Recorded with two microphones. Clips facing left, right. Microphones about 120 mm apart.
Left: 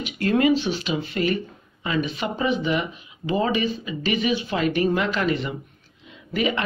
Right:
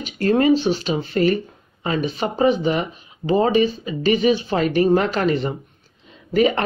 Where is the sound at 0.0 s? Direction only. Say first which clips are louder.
Right 3 dB; 35° right (ahead or behind).